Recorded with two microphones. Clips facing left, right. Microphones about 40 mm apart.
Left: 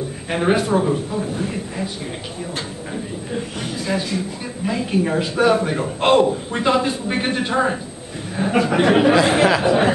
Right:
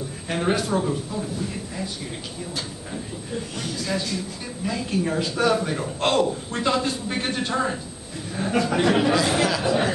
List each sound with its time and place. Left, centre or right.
0.3 s a man's voice: left
2.9 s a man's voice: left